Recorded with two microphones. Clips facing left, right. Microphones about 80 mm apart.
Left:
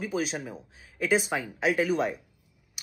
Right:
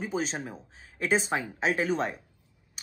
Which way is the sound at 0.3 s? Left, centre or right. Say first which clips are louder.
Left 1 dB; right.